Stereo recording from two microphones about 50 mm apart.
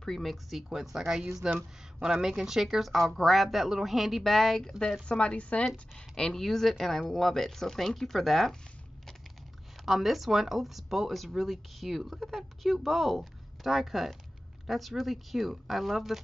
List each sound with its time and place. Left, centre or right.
0.0 s a woman's voice: centre
5.0 s a woman's voice: left; by 8.5 s centre
9.8 s a woman's voice: centre